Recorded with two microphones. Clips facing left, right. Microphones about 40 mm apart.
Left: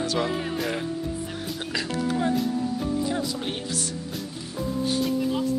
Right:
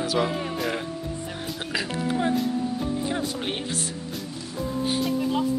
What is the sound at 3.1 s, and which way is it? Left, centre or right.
Speech, right.